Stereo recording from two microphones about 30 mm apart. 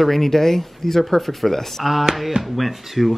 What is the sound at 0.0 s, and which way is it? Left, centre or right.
Speech, centre.